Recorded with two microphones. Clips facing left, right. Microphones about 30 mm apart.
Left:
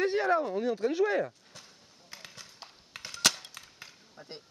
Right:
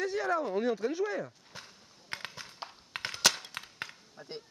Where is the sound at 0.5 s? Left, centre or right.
Centre.